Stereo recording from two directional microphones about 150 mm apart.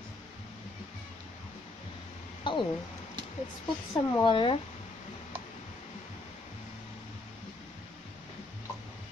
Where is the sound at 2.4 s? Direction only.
30° left (ahead or behind).